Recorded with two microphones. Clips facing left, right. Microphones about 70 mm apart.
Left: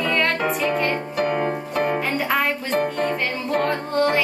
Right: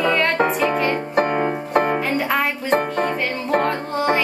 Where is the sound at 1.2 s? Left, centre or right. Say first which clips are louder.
Right 3 dB; right.